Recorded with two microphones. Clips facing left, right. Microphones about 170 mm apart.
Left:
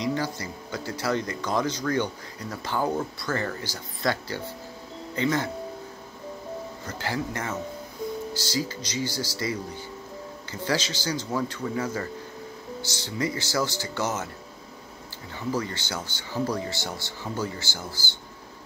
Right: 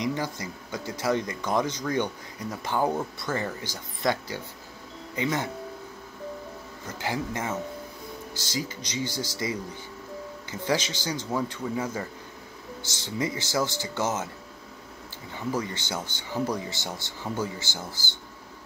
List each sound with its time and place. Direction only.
0.0 s speech: 20° right (ahead or behind)
7.0 s speech: 20° right (ahead or behind)
15.5 s speech: 20° right (ahead or behind)